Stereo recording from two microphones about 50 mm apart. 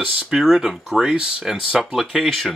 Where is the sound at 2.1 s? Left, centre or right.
Centre.